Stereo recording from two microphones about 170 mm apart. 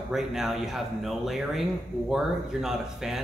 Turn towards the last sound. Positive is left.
turn(degrees=-5)  # may be behind; listen again after turning